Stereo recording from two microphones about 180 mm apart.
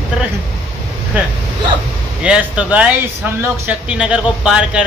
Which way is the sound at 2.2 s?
5° right (ahead or behind).